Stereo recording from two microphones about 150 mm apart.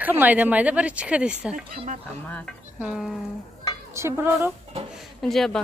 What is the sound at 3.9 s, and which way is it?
Speech, 15° right (ahead or behind).